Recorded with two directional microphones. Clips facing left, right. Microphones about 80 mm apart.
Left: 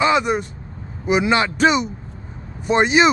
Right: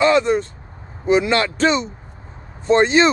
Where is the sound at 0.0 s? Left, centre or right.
Centre.